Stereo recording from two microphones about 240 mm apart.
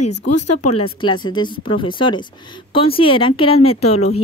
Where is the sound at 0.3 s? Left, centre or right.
Left.